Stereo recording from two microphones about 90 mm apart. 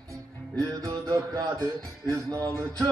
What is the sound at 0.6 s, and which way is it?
Music, 40° right (ahead or behind).